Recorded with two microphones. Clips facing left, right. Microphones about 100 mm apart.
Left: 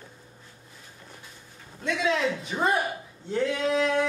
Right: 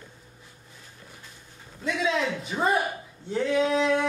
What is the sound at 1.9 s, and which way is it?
Speech, centre (ahead or behind).